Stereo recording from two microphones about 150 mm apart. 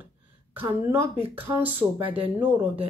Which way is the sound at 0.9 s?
15° right (ahead or behind).